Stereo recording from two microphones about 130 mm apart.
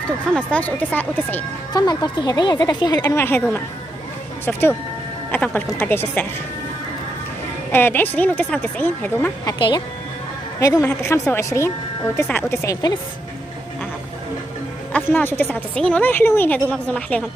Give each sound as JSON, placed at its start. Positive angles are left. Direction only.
{"t": 0.4, "sound": "a woman's voice", "side_deg": 10}
{"t": 1.7, "sound": "a woman's voice", "side_deg": 30}
{"t": 3.2, "sound": "a woman's voice", "side_deg": 15}
{"t": 7.7, "sound": "a woman's voice", "side_deg": 15}
{"t": 9.5, "sound": "a woman's voice", "side_deg": 35}
{"t": 14.9, "sound": "a woman's voice", "side_deg": 15}